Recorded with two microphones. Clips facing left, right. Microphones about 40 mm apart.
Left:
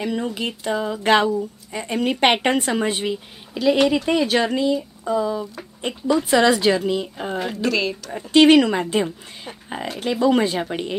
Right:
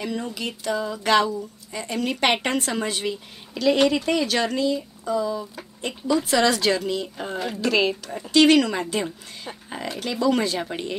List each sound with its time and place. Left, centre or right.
0.0 s a woman's voice: left; by 8.3 s centre
8.3 s speech: left